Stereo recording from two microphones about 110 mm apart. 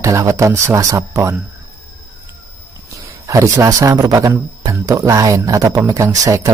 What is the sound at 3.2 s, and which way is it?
A man's voice, 30° right (ahead or behind).